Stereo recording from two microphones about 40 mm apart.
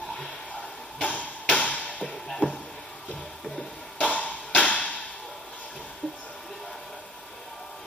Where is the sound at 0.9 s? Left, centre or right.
Left.